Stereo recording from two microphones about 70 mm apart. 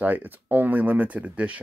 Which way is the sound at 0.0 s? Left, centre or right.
Right.